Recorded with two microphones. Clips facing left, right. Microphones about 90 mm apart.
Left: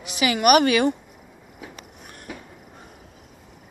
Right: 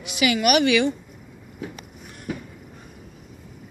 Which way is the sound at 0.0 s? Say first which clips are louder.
Left 1 dB; 35° left (ahead or behind).